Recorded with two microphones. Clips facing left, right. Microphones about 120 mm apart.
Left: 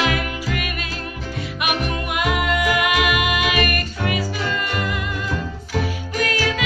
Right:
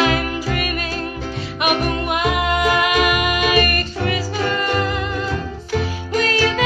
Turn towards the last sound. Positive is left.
turn(degrees=-30)  # may be behind; listen again after turning